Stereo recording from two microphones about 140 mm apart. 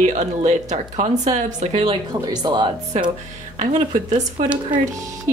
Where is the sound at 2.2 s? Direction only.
30° right (ahead or behind).